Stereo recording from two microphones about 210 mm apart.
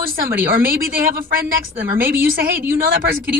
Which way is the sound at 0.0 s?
45° right (ahead or behind).